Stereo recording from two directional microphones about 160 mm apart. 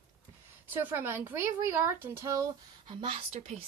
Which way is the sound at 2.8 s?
30° right (ahead or behind).